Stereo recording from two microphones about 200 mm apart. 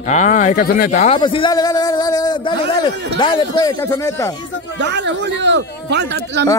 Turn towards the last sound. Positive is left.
turn(degrees=-60)  # may be behind; listen again after turning